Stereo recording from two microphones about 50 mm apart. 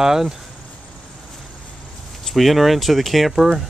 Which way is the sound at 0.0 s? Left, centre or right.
Centre.